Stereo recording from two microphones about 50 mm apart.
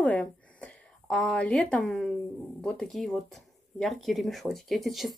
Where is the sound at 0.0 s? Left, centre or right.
Left.